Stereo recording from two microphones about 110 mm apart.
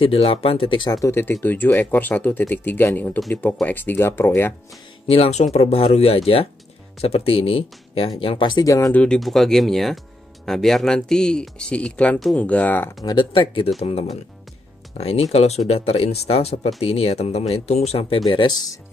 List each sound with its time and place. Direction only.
0.0 s speech: 60° left (ahead or behind); by 1.1 s 35° left (ahead or behind)
1.1 s speech: 20° left (ahead or behind)
5.0 s speech: 65° left (ahead or behind); by 8.6 s 50° left (ahead or behind)
8.6 s speech: 30° left (ahead or behind)
8.9 s speech: 10° left (ahead or behind)
13.0 s speech: 45° left (ahead or behind)
13.7 s speech: 70° left (ahead or behind)
15.3 s speech: 80° left